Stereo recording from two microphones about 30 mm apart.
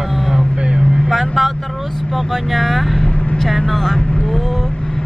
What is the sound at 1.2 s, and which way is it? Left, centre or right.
Vehicle, centre.